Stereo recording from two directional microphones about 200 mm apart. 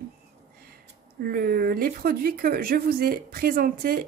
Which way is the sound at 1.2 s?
50° right (ahead or behind).